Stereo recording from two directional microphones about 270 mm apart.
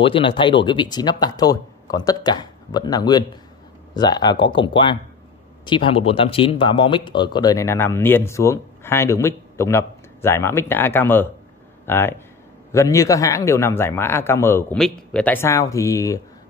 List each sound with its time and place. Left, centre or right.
0.0 s speech: centre